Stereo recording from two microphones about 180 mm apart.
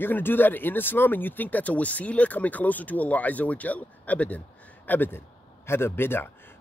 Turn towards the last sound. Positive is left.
turn(degrees=10)  # may be behind; listen again after turning